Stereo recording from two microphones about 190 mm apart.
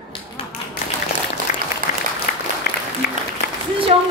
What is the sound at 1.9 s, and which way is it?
Applause, 40° left (ahead or behind).